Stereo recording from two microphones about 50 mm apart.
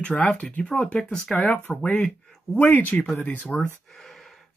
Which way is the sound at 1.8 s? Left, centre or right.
Centre.